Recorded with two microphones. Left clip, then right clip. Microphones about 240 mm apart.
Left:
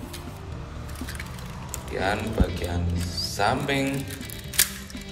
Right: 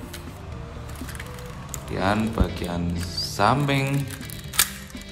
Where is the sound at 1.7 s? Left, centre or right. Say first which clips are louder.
Right 2 dB; centre.